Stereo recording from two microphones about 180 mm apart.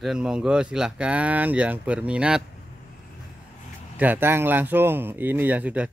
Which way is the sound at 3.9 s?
10° right (ahead or behind).